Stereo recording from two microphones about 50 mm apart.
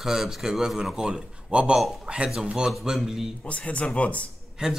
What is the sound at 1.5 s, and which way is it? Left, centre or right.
Speech, right.